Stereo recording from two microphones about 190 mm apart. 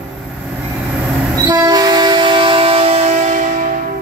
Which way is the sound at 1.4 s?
20° right (ahead or behind).